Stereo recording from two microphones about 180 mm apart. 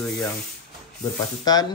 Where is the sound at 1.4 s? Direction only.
20° left (ahead or behind).